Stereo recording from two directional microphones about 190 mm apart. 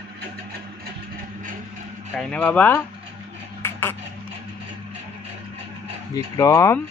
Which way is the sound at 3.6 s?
10° left (ahead or behind).